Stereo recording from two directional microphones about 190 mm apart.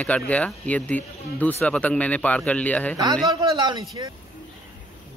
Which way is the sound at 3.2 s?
20° right (ahead or behind).